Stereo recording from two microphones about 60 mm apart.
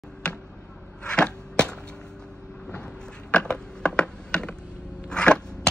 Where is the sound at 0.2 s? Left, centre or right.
Centre.